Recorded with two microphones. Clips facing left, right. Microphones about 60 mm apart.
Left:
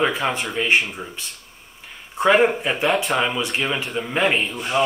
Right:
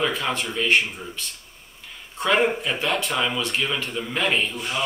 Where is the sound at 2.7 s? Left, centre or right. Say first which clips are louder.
Left 3 dB; left.